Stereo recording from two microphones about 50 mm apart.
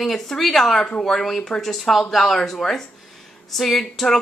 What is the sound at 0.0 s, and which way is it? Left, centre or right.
Speech, centre.